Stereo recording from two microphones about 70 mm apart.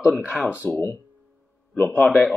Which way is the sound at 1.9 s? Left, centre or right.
Centre.